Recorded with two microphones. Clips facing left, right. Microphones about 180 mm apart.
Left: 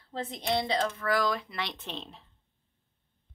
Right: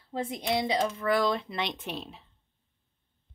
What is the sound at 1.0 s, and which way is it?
Speech, 25° right (ahead or behind).